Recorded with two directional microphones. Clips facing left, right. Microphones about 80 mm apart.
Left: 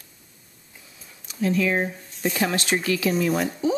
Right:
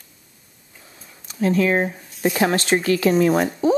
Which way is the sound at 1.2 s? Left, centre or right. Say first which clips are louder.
Right 4 dB; right.